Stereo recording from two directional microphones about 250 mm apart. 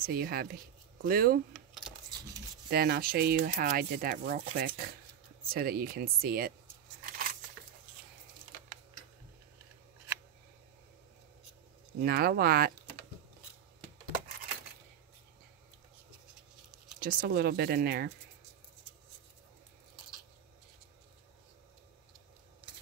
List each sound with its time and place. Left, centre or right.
0.0 s speech: right
2.7 s speech: right
12.0 s speech: right
17.0 s speech: right